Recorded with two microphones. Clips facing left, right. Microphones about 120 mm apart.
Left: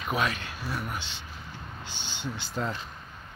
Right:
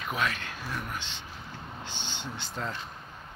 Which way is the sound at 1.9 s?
20° right (ahead or behind).